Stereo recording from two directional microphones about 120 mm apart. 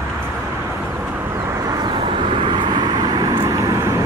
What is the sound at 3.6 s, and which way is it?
Vehicle, 25° right (ahead or behind).